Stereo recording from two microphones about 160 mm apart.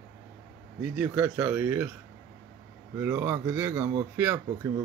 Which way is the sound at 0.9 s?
15° right (ahead or behind).